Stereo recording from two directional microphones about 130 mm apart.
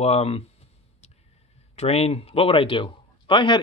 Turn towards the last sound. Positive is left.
turn(degrees=40)  # may be behind; listen again after turning